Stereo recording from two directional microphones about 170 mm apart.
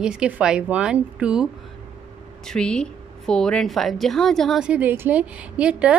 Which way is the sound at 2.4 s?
5° left (ahead or behind).